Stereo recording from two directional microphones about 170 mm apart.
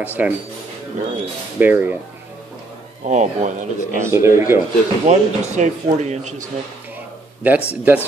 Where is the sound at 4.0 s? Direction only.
15° right (ahead or behind).